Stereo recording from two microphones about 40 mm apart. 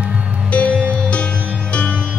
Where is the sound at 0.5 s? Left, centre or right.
Left.